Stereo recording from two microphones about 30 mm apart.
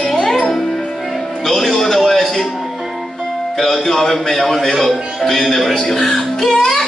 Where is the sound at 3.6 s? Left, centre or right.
Centre.